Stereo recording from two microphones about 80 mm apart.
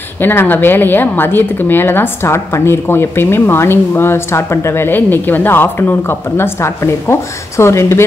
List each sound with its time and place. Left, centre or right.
0.2 s a woman's voice: left